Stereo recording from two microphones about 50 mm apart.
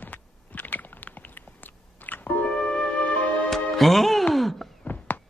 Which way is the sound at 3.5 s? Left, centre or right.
Centre.